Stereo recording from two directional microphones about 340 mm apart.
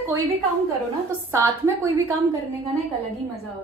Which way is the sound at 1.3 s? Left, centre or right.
Centre.